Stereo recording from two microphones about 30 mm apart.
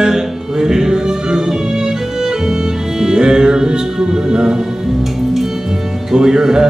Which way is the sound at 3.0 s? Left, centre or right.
Right.